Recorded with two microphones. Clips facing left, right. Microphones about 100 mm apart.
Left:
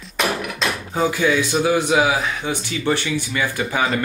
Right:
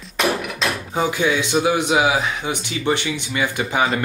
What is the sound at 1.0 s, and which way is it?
A man's voice, 20° right (ahead or behind).